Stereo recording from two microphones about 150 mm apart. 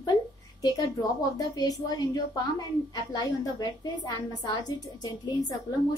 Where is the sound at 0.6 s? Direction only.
25° left (ahead or behind).